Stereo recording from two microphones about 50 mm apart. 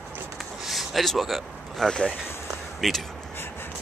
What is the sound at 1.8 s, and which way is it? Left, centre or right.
Speech, centre.